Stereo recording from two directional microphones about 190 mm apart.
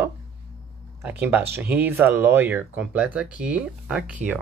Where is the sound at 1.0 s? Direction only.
10° right (ahead or behind).